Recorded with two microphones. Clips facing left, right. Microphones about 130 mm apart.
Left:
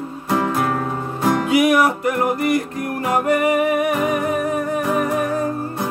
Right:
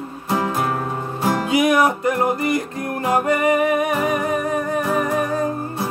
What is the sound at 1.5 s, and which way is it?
Music, 25° right (ahead or behind).